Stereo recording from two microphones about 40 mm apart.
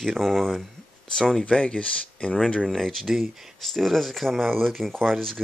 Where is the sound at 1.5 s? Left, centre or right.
Left.